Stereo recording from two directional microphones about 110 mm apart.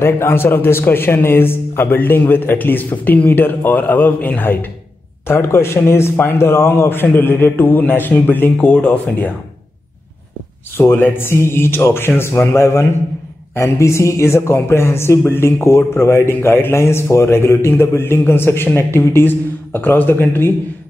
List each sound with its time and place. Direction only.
0.0 s a man's voice: 20° left (ahead or behind)
10.8 s speech: 20° left (ahead or behind)